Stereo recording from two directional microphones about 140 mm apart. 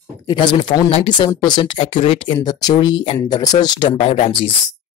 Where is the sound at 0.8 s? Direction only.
50° left (ahead or behind).